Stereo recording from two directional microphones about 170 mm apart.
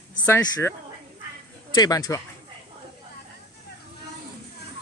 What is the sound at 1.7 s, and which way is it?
Speech, 25° left (ahead or behind).